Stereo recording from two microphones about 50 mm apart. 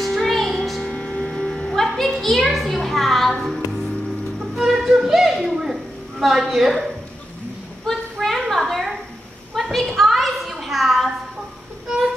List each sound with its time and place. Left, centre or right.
0.0 s music: centre
0.8 s music: left
1.7 s music: centre
2.1 s a child's voice: centre
4.4 s music: centre
7.8 s a sound: centre